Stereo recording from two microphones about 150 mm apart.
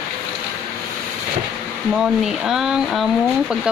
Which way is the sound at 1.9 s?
5° right (ahead or behind).